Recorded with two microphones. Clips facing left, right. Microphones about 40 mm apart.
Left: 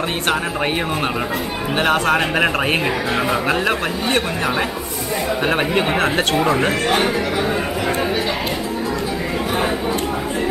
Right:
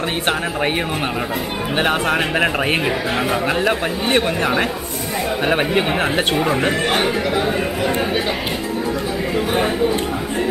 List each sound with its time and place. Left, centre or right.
1.8 s speech: centre
4.1 s speech: centre
5.4 s speech: centre
6.8 s speech: right